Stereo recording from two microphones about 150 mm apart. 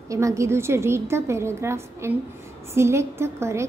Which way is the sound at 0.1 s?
20° right (ahead or behind).